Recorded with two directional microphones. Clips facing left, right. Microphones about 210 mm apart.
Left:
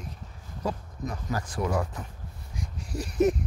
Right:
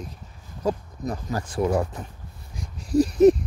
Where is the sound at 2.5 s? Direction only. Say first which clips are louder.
Right 15 dB; 35° right (ahead or behind).